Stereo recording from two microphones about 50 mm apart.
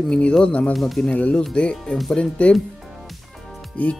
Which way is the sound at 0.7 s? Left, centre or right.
Centre.